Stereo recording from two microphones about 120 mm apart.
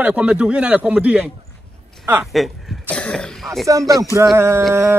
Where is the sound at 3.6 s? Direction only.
25° right (ahead or behind).